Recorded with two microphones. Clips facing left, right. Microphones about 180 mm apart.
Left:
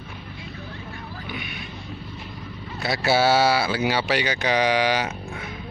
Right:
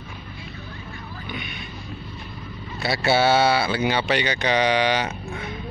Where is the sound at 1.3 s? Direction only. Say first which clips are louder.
Right 1 dB; 5° left (ahead or behind).